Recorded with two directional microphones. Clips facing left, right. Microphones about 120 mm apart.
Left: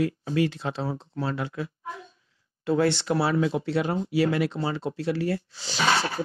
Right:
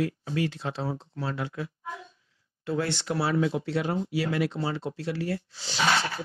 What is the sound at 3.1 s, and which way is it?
Speech, 65° left (ahead or behind).